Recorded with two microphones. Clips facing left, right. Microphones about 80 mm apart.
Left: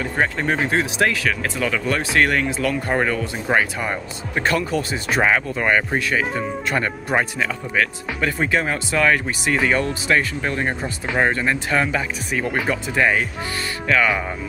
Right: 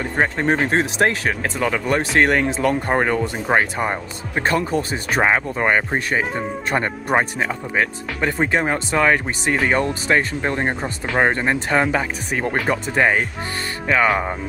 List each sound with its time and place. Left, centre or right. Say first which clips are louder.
0.0 s speech: right 2 dB; right